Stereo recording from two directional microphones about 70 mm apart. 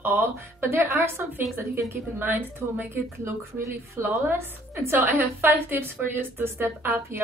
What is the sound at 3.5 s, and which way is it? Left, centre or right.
Speech, right.